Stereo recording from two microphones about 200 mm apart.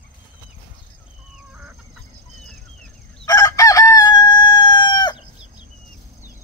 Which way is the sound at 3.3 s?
15° left (ahead or behind).